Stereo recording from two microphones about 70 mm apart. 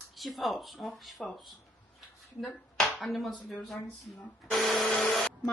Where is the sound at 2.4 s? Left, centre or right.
Centre.